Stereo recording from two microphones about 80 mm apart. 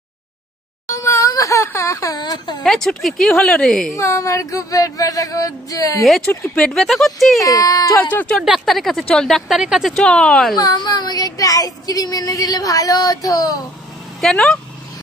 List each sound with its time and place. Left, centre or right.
0.8 s a sound: left
2.6 s a woman's voice: centre
3.9 s child singing: left
6.5 s a woman's voice: centre
7.4 s child singing: left
8.1 s speech: left
8.4 s a woman's voice: centre
9.6 s a woman's voice: centre
9.9 s speech: centre
10.6 s child singing: left
14.3 s speech: centre